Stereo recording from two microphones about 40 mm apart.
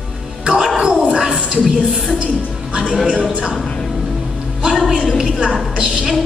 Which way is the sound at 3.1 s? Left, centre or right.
Right.